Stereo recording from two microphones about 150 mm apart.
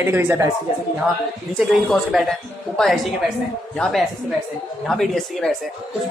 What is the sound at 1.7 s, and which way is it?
A woman's voice, centre (ahead or behind).